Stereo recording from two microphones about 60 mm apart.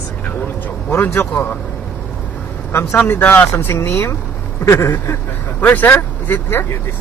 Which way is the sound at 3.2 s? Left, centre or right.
Left.